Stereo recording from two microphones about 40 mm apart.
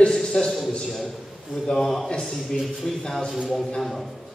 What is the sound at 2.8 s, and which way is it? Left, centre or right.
Speech, centre.